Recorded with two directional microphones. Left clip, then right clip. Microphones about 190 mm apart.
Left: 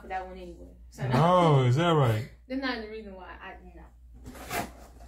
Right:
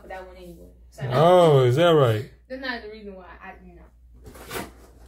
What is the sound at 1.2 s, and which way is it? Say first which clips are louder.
Speech: right 8 dB; 50° right (ahead or behind).